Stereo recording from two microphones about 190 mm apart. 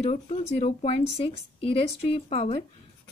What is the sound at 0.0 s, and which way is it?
Speech, 35° left (ahead or behind).